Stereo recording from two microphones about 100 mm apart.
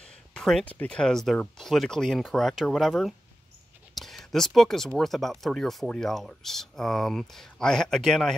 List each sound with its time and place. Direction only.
0.3 s speech: 5° left (ahead or behind)